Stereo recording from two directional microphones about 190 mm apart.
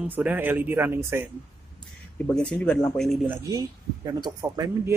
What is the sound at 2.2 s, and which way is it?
Speech, 5° left (ahead or behind).